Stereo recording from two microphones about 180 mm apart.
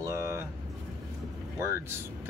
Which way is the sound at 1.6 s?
15° right (ahead or behind).